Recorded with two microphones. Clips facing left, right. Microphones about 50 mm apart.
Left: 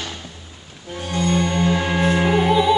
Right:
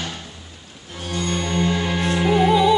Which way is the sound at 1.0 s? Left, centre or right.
Centre.